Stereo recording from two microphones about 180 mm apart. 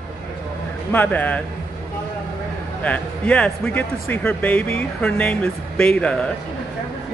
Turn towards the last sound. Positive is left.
turn(degrees=5)  # may be behind; listen again after turning